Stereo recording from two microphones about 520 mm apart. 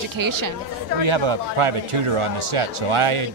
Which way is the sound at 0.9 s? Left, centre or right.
Right.